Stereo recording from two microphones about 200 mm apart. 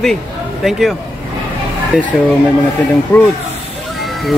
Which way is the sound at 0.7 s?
Centre (ahead or behind).